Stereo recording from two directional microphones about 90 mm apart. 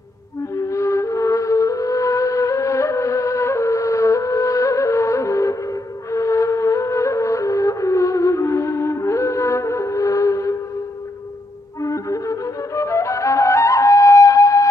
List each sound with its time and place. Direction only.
0.7 s music: 35° left (ahead or behind)
6.1 s flute: 35° left (ahead or behind)
11.8 s flute: 40° left (ahead or behind)